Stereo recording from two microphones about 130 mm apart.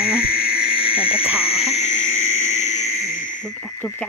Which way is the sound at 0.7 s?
45° left (ahead or behind).